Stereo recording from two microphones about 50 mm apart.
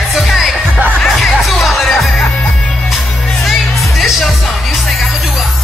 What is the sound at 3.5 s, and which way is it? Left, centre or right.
Music, centre.